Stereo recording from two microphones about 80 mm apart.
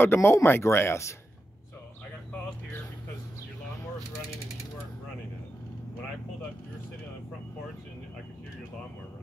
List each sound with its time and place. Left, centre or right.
0.0 s speech: left